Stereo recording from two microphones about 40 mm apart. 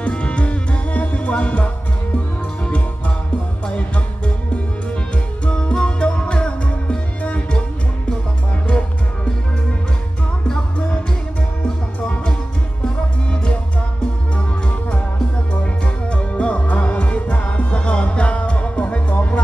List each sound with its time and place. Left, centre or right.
0.0 s music: left
3.6 s music: left
5.5 s music: left
8.6 s music: left
12.8 s music: left
15.6 s music: left